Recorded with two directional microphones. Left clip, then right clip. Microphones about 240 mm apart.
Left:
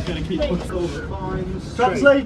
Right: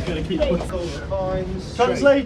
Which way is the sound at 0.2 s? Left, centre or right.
Centre.